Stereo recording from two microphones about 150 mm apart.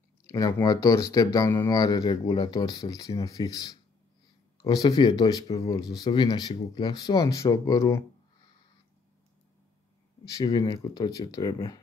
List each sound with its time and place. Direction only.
0.2 s speech: 25° left (ahead or behind)
10.2 s speech: 25° left (ahead or behind)